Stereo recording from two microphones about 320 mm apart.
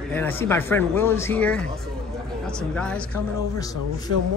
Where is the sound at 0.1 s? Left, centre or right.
Centre.